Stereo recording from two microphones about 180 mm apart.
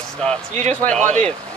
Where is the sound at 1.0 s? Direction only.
40° right (ahead or behind).